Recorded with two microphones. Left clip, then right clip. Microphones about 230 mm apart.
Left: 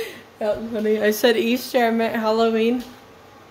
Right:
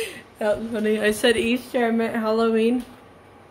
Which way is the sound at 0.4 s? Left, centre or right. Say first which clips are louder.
Even; centre.